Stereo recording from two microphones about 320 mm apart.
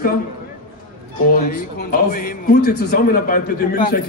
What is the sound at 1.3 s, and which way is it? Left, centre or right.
A man's voice, left.